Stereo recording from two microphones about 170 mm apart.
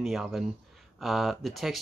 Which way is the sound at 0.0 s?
Centre (ahead or behind).